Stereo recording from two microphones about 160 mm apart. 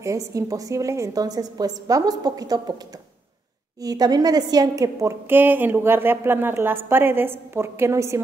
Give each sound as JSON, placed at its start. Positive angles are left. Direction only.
{"t": 0.0, "sound": "a woman's voice", "side_deg": -20}
{"t": 3.8, "sound": "a woman's voice", "side_deg": -25}